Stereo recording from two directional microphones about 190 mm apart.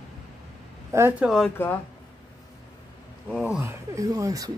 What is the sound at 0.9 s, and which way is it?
Speech, 10° right (ahead or behind).